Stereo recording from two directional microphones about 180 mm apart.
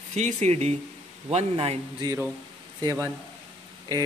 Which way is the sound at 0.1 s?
40° right (ahead or behind).